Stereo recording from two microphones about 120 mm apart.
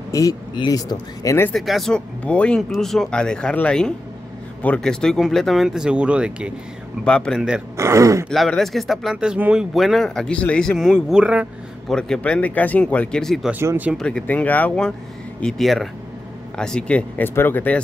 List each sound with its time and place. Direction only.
0.1 s speech: 30° left (ahead or behind)
1.5 s speech: centre (ahead or behind)
7.1 s speech: 10° left (ahead or behind)
7.3 s speech: 5° right (ahead or behind)
7.7 s speech: 25° right (ahead or behind)
8.3 s speech: 5° left (ahead or behind)
11.9 s speech: 5° left (ahead or behind)
13.5 s speech: 15° right (ahead or behind)
13.9 s speech: 5° left (ahead or behind)